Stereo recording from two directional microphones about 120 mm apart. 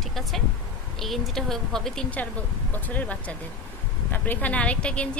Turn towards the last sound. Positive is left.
turn(degrees=10)  # may be behind; listen again after turning